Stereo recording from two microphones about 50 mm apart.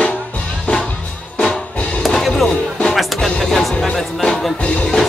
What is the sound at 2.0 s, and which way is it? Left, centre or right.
Music, centre.